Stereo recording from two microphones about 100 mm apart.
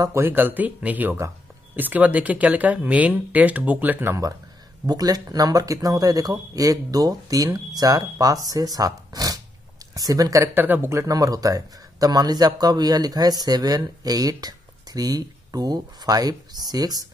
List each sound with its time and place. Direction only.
0.0 s speech: 30° right (ahead or behind)
0.3 s speech: 20° right (ahead or behind)
4.8 s speech: 40° right (ahead or behind)